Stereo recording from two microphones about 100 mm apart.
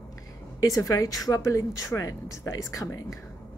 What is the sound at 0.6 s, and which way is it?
A woman's voice, 35° left (ahead or behind).